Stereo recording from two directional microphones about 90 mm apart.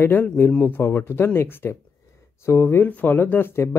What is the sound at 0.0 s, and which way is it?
Speech, 25° left (ahead or behind).